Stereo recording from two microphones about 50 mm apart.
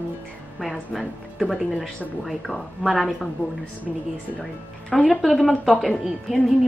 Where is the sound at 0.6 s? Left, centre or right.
Centre.